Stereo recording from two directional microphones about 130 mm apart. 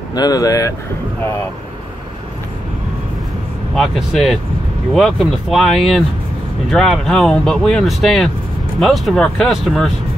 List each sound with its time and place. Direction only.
0.1 s speech: 30° left (ahead or behind)
3.7 s speech: centre (ahead or behind)